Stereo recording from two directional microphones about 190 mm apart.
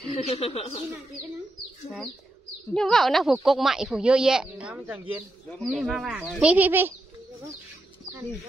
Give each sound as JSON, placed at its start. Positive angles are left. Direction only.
{"t": 0.1, "sound": "speech", "side_deg": 30}
{"t": 2.7, "sound": "speech", "side_deg": 5}